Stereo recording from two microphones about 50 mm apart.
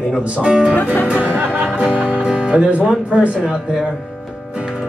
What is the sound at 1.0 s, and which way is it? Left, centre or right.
Music, right.